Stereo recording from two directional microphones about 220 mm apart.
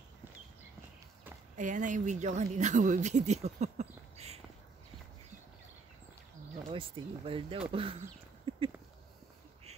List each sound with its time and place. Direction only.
1.6 s speech: 35° right (ahead or behind)
6.7 s speech: 25° right (ahead or behind)
8.5 s a sound: 25° right (ahead or behind)